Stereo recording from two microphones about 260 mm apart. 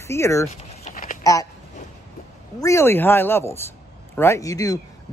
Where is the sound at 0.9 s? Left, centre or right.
Left.